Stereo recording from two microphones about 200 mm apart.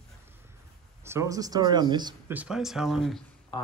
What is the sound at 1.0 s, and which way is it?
Speech, 15° right (ahead or behind).